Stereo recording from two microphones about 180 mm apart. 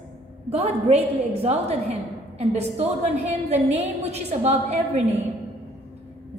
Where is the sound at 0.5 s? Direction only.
35° right (ahead or behind).